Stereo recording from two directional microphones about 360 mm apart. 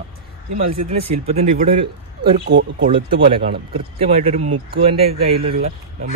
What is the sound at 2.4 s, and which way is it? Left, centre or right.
Speech, right.